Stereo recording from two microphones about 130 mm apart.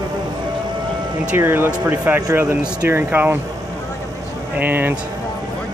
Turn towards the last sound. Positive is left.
turn(degrees=-15)  # may be behind; listen again after turning